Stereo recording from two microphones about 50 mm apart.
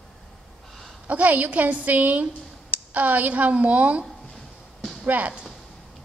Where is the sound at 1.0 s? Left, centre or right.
Right.